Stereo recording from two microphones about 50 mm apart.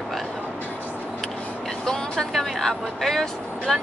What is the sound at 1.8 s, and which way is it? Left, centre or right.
Speech, centre.